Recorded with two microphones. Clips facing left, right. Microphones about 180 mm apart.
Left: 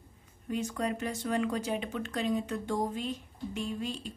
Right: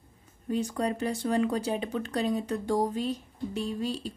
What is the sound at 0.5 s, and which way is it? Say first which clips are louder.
A woman's voice: right 3 dB; 35° right (ahead or behind).